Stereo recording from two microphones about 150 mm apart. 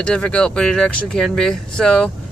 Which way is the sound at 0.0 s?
5° left (ahead or behind).